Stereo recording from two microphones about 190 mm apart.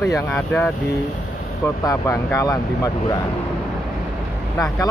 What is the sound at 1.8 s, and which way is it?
Speech, 15° left (ahead or behind).